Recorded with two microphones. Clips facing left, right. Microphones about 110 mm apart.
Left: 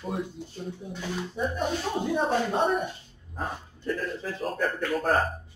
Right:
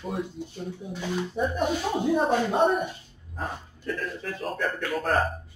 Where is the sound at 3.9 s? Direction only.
Centre (ahead or behind).